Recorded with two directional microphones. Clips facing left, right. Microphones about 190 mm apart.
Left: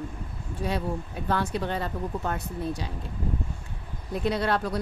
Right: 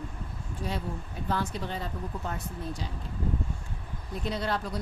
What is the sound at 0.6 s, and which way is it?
Speech, 70° left (ahead or behind).